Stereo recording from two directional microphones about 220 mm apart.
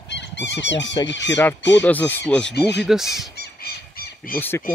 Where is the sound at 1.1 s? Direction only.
55° left (ahead or behind).